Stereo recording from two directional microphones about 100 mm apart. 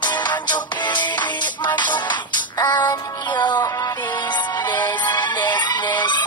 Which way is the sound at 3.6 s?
35° left (ahead or behind).